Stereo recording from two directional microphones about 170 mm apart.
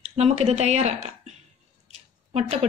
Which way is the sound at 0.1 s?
40° right (ahead or behind).